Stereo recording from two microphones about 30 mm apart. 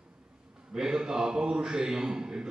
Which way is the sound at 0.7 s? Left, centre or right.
Right.